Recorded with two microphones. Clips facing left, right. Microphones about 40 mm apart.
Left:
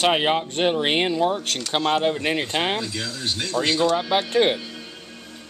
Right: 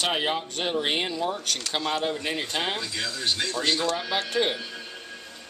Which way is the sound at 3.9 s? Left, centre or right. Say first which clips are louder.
Left 6 dB; left.